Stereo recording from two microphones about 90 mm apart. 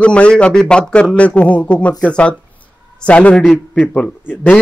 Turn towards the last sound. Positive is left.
turn(degrees=20)  # may be behind; listen again after turning